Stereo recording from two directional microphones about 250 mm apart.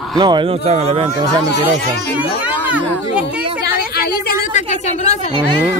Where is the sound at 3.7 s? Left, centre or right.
Left.